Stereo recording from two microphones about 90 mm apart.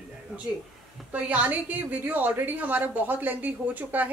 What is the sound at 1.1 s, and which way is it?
A woman's voice, 15° right (ahead or behind).